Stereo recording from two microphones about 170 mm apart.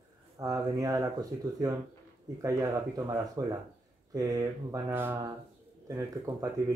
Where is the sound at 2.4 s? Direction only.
20° right (ahead or behind).